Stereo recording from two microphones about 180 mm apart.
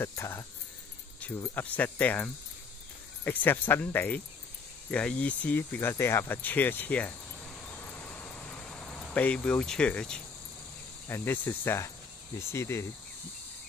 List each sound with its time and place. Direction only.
0.0 s speech: 15° left (ahead or behind)
7.6 s a sound: 10° left (ahead or behind)
11.1 s speech: 15° left (ahead or behind)